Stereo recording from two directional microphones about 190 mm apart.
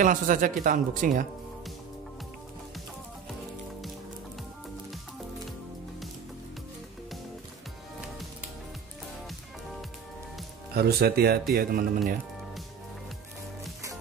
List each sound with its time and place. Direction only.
0.0 s speech: 45° right (ahead or behind)
10.7 s speech: 55° right (ahead or behind)